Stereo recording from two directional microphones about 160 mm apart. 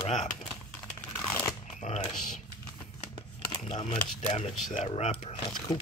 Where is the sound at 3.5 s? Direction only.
30° left (ahead or behind).